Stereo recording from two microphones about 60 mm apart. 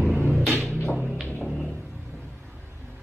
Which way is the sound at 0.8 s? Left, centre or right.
Left.